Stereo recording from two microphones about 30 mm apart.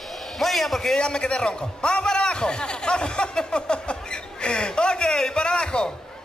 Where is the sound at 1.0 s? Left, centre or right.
Left.